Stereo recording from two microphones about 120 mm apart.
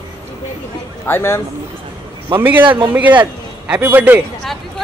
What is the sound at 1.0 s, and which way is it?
Speech, 20° left (ahead or behind).